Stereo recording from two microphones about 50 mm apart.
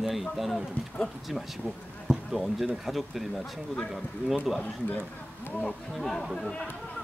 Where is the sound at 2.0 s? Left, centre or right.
Centre.